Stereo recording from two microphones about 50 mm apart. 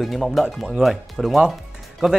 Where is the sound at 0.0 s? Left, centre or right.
Centre.